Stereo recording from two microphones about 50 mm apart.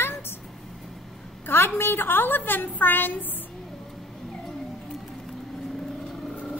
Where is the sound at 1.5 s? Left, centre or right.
Left.